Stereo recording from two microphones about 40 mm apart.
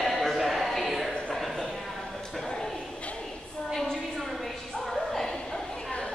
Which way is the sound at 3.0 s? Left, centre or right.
Left.